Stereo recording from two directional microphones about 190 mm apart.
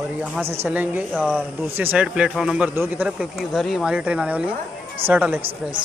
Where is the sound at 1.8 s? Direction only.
10° right (ahead or behind).